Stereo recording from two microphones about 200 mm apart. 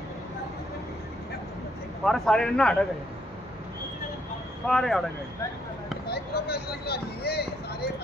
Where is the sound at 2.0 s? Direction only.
Centre (ahead or behind).